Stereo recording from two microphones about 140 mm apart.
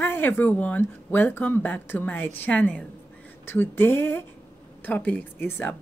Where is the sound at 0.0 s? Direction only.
15° left (ahead or behind).